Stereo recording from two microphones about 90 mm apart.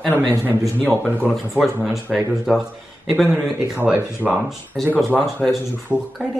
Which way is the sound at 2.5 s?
5° right (ahead or behind).